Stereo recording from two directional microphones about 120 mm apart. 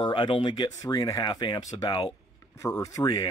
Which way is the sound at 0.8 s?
30° left (ahead or behind).